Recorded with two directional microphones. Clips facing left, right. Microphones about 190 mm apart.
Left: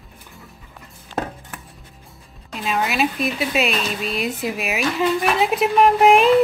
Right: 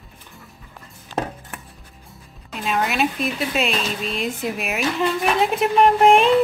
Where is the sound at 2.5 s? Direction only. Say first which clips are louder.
Even; centre (ahead or behind).